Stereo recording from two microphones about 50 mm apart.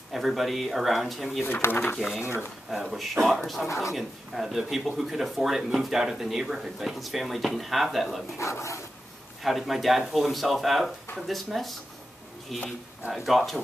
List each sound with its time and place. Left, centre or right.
0.1 s speech: centre
1.4 s speech: left
2.7 s speech: centre
8.4 s speech: left
9.4 s speech: centre